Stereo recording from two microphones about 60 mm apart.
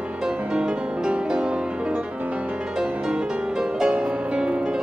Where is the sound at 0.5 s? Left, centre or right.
Centre.